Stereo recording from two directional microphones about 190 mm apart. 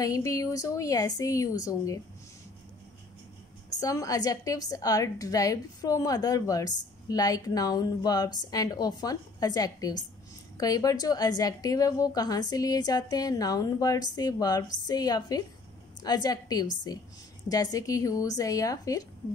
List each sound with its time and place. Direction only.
0.0 s a woman's voice: 15° left (ahead or behind)
3.8 s a woman's voice: 20° left (ahead or behind)